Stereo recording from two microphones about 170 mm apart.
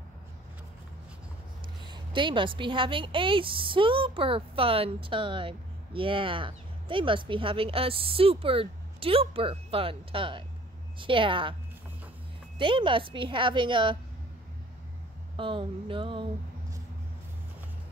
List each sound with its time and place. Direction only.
1.8 s a woman's voice: 30° right (ahead or behind)
12.5 s a woman's voice: 30° right (ahead or behind)
15.3 s a woman's voice: 30° right (ahead or behind)